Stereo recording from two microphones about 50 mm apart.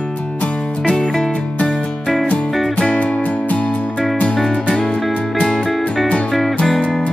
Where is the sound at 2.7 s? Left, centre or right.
Left.